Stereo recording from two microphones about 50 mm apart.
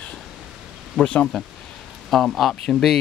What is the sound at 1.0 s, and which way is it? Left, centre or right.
Speech, left.